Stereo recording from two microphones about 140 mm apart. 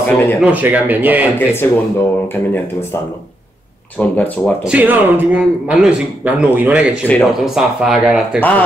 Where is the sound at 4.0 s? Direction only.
10° left (ahead or behind).